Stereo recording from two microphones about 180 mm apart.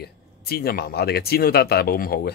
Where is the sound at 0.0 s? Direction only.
60° left (ahead or behind).